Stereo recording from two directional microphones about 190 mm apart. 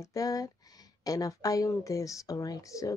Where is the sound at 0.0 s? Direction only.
20° left (ahead or behind).